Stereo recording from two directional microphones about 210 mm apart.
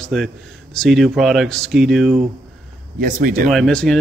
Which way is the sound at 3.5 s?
5° left (ahead or behind).